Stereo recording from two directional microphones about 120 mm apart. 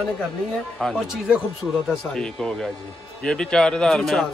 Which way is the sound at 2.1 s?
5° left (ahead or behind).